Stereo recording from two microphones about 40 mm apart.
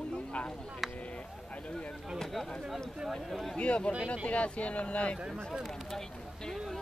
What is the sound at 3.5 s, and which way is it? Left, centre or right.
Speech, left.